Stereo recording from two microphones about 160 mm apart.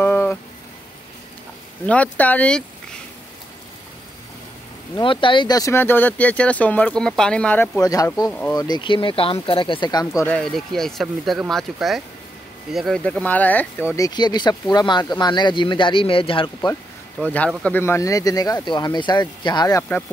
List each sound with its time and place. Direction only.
0.0 s a sound: 10° left (ahead or behind)
1.9 s speech: 10° left (ahead or behind)
4.9 s speech: 30° left (ahead or behind); by 7.8 s 10° left (ahead or behind)
7.8 s speech: 20° left (ahead or behind)
8.3 s speech: 10° left (ahead or behind)
8.5 s speech: 25° left (ahead or behind)
10.2 s speech: 5° left (ahead or behind); by 16.7 s 35° left (ahead or behind)
17.2 s speech: 10° left (ahead or behind); by 19.8 s 25° left (ahead or behind)